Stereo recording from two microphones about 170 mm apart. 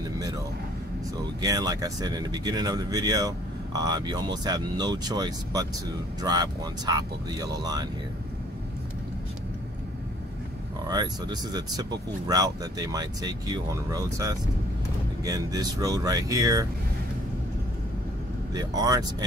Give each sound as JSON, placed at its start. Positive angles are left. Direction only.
{"t": 1.1, "sound": "speech", "side_deg": -20}
{"t": 10.9, "sound": "speech", "side_deg": -25}
{"t": 18.5, "sound": "speech", "side_deg": -25}